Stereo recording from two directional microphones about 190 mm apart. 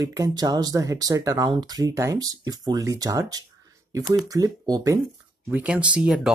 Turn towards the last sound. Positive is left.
turn(degrees=-5)  # may be behind; listen again after turning